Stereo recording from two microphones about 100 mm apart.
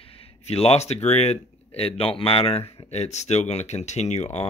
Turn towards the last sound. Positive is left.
turn(degrees=90)